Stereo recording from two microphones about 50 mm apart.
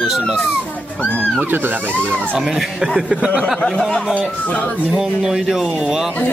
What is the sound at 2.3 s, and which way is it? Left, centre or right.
Speech, centre.